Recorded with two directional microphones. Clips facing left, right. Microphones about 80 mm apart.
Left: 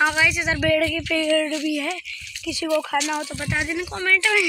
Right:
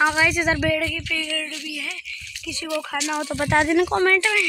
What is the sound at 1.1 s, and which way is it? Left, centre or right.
Speech, left.